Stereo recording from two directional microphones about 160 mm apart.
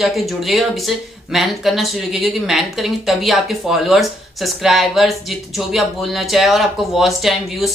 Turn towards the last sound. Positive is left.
turn(degrees=0)  # may be behind; listen again after turning